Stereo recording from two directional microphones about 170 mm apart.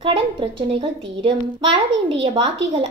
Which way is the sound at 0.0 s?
30° right (ahead or behind).